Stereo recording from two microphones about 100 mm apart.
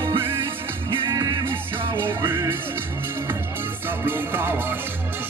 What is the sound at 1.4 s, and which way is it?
Music, 25° right (ahead or behind).